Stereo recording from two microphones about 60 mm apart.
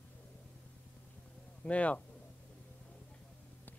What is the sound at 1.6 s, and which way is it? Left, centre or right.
Speech, left.